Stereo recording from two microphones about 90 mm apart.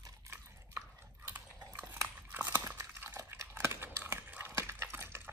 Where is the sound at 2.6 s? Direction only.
30° right (ahead or behind).